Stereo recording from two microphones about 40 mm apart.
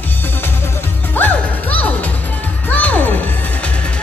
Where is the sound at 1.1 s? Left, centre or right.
Left.